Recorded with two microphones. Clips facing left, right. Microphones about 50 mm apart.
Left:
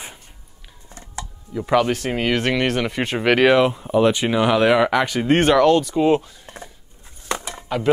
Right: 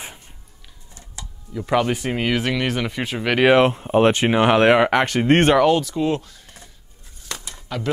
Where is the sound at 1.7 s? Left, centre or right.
Centre.